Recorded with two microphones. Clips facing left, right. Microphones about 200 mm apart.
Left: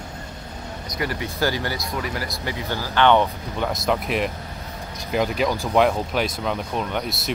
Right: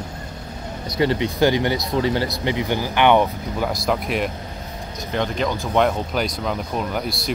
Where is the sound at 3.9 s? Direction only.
Centre (ahead or behind).